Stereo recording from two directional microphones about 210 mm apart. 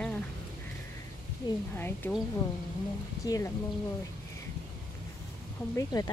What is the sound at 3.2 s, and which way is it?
Speech, 15° left (ahead or behind).